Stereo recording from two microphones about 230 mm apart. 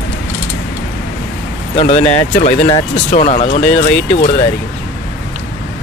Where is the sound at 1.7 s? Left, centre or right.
Left.